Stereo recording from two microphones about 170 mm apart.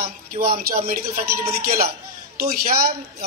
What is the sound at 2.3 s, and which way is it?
Speech, 60° right (ahead or behind).